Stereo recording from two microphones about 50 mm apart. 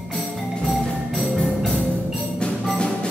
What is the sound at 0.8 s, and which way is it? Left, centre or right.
Music, centre.